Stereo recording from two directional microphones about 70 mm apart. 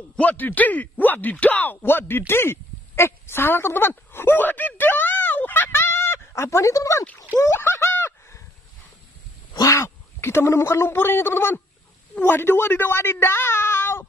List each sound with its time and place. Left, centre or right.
0.1 s speech: left
7.3 s a sound: left
9.7 s speech: left